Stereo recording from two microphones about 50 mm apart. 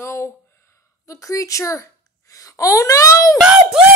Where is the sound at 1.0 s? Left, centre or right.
Left.